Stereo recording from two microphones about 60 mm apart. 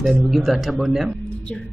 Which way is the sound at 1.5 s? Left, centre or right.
Centre.